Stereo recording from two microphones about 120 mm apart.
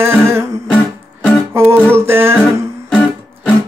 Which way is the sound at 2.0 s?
20° right (ahead or behind).